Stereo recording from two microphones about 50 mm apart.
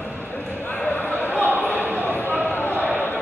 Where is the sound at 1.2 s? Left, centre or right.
Left.